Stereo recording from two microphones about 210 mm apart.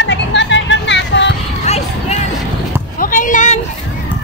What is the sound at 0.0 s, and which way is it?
Music, 60° left (ahead or behind).